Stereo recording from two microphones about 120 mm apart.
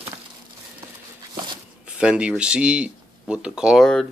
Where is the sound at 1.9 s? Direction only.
10° right (ahead or behind).